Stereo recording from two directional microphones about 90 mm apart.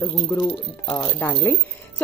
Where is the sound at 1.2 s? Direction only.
25° left (ahead or behind).